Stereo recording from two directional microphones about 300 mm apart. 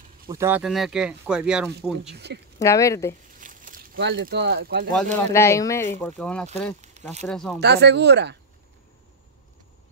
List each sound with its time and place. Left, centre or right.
0.3 s speech: centre
2.1 s speech: right
2.6 s speech: centre
3.3 s a sound: right
5.3 s speech: centre
6.8 s speech: right
7.2 s speech: centre
7.6 s speech: right